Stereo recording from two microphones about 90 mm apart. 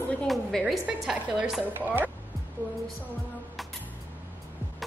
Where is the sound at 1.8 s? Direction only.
20° right (ahead or behind).